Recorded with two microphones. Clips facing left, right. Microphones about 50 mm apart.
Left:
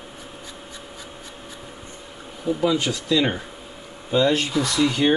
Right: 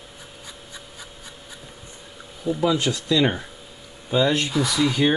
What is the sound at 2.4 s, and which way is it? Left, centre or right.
Speech, centre.